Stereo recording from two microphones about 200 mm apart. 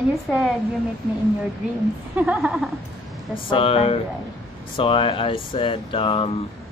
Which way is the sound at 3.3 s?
25° left (ahead or behind).